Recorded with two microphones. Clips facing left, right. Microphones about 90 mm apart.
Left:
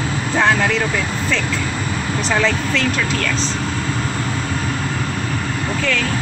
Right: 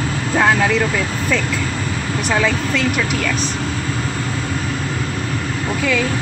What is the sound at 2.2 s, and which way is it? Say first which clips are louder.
Speech: right 1 dB; 10° right (ahead or behind).